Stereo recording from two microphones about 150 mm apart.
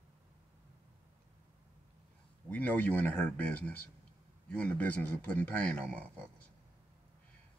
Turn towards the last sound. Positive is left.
turn(degrees=5)  # may be behind; listen again after turning